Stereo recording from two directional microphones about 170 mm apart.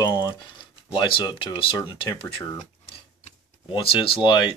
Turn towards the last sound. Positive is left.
turn(degrees=25)  # may be behind; listen again after turning